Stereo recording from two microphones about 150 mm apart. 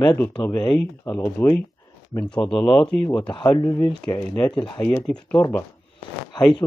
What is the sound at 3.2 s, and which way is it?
Speech, 30° left (ahead or behind).